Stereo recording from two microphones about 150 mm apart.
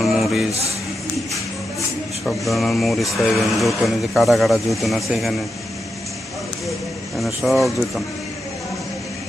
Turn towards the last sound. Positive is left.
turn(degrees=0)  # may be behind; listen again after turning